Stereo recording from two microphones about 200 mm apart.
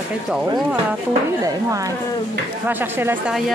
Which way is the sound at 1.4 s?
15° right (ahead or behind).